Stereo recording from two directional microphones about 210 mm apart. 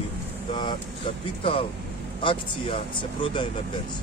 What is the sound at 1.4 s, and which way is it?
Speech, 25° left (ahead or behind).